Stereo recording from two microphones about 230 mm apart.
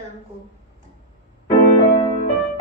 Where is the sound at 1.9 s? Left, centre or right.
Left.